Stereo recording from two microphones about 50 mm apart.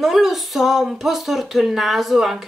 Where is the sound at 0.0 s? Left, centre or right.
Centre.